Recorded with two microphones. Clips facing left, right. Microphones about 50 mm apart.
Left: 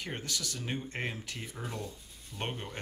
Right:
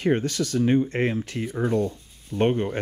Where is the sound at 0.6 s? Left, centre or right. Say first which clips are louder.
Right 18 dB; right.